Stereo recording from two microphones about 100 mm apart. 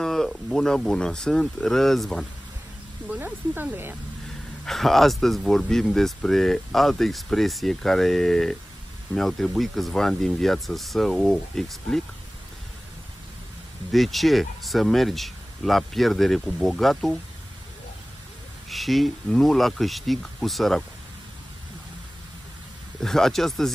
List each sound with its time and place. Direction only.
0.0 s speech: 5° left (ahead or behind)
3.2 s speech: 20° right (ahead or behind)
4.6 s speech: centre (ahead or behind)
13.9 s speech: centre (ahead or behind)
18.7 s speech: centre (ahead or behind)
22.9 s speech: 5° left (ahead or behind)